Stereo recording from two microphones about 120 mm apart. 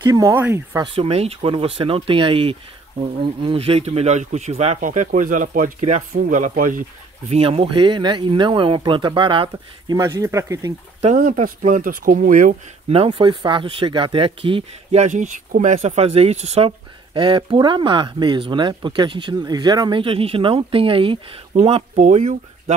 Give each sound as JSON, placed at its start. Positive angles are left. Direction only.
{"t": 0.0, "sound": "speech", "side_deg": -25}
{"t": 0.8, "sound": "speech", "side_deg": -50}
{"t": 7.2, "sound": "speech", "side_deg": -55}
{"t": 9.9, "sound": "speech", "side_deg": -25}
{"t": 11.0, "sound": "speech", "side_deg": -65}
{"t": 12.9, "sound": "speech", "side_deg": -50}
{"t": 15.0, "sound": "speech", "side_deg": -85}
{"t": 21.5, "sound": "speech", "side_deg": -60}